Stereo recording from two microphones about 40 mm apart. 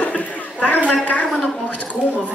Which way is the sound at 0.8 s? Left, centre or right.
Left.